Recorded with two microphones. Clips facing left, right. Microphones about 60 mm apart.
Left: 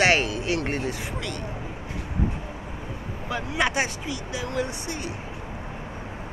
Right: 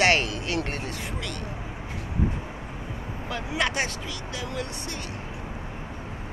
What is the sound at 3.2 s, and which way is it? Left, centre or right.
Speech, centre.